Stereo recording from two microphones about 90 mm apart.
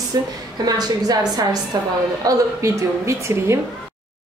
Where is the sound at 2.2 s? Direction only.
35° right (ahead or behind).